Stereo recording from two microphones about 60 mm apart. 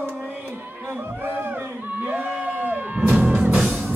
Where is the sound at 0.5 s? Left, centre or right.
Right.